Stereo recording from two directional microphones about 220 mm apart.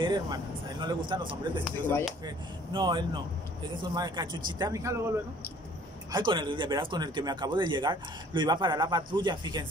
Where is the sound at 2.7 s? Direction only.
20° right (ahead or behind).